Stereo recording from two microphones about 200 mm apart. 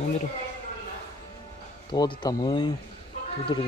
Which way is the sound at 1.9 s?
20° left (ahead or behind).